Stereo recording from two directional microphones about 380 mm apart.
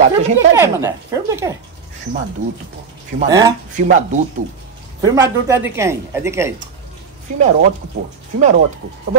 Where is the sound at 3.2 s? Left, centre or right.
Centre.